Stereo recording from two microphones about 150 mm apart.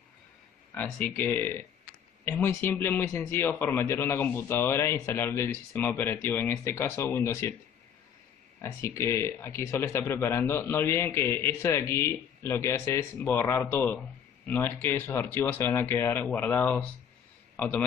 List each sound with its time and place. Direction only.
0.7 s a man's voice: 10° left (ahead or behind)
8.5 s a man's voice: 20° left (ahead or behind)